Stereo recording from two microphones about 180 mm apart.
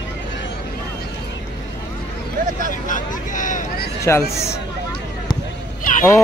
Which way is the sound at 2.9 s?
45° left (ahead or behind).